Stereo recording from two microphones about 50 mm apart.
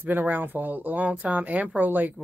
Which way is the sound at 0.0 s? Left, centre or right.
Right.